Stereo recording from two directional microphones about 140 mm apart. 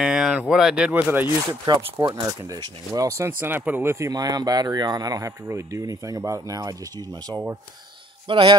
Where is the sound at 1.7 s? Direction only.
35° right (ahead or behind).